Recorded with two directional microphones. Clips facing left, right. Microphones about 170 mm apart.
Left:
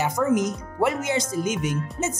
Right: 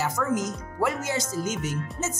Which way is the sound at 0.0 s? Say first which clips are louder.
Left 5 dB; 20° left (ahead or behind).